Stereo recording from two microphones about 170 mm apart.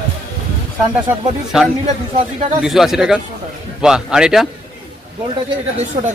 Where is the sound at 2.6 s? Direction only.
Centre (ahead or behind).